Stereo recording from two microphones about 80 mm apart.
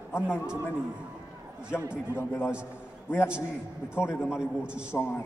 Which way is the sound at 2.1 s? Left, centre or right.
Left.